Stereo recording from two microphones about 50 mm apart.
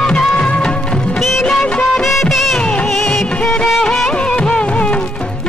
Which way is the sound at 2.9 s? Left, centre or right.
Centre.